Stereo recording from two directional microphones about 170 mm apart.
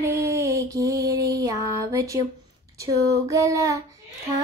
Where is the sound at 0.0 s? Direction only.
15° right (ahead or behind).